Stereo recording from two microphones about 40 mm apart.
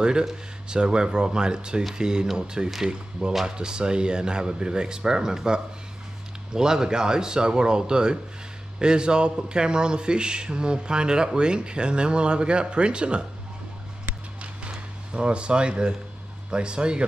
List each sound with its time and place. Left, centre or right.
0.0 s a man's voice: centre
14.0 s a sound: right
16.4 s a man's voice: right